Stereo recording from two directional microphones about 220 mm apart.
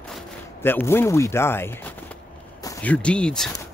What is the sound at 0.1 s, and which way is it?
Speech, 10° left (ahead or behind).